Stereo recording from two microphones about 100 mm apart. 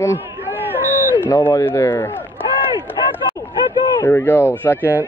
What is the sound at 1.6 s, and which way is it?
Speech, 25° left (ahead or behind).